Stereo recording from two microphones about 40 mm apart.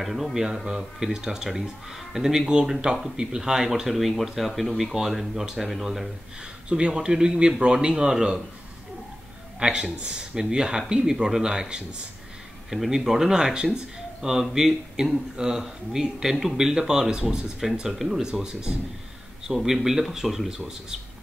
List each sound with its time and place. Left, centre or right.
0.0 s speech: centre
5.7 s speech: centre
6.7 s speech: right
9.6 s speech: centre
12.6 s speech: centre
18.2 s speech: centre